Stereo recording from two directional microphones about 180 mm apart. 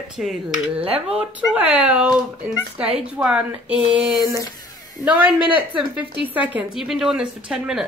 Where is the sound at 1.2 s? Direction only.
5° right (ahead or behind).